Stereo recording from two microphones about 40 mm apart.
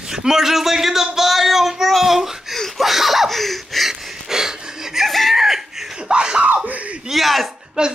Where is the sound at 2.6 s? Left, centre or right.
Centre.